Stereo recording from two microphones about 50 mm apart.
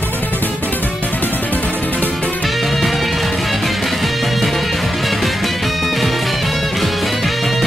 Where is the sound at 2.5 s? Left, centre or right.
Centre.